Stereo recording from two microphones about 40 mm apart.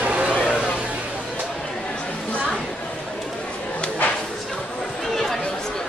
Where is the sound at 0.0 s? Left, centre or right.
Right.